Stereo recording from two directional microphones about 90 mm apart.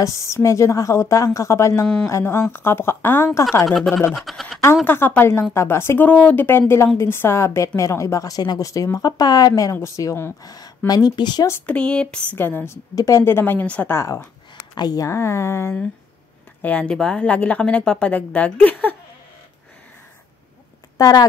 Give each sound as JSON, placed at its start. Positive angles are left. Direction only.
{"t": 0.0, "sound": "a woman's voice", "side_deg": 35}
{"t": 3.6, "sound": "speech", "side_deg": 0}
{"t": 4.8, "sound": "speech", "side_deg": 25}
{"t": 6.0, "sound": "a woman's voice", "side_deg": 15}
{"t": 10.4, "sound": "speech", "side_deg": 45}
{"t": 11.6, "sound": "a woman's voice", "side_deg": 10}
{"t": 12.9, "sound": "speech", "side_deg": 35}
{"t": 13.9, "sound": "a woman's voice", "side_deg": 30}
{"t": 14.8, "sound": "speech", "side_deg": 50}
{"t": 15.0, "sound": "a woman's voice", "side_deg": 35}
{"t": 16.6, "sound": "a woman's voice", "side_deg": 15}
{"t": 21.0, "sound": "speech", "side_deg": 45}